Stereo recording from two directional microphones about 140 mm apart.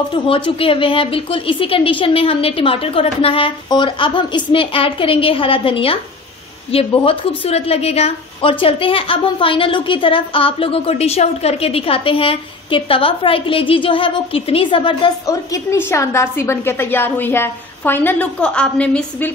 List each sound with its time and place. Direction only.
0.1 s a woman's voice: 40° left (ahead or behind)
15.2 s a woman's voice: 20° left (ahead or behind)